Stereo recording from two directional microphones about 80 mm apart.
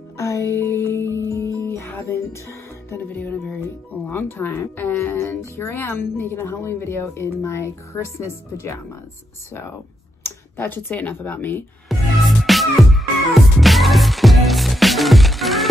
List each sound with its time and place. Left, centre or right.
0.2 s music: left
3.1 s speech: centre
4.1 s speech: left
10.2 s speech: left
11.9 s music: centre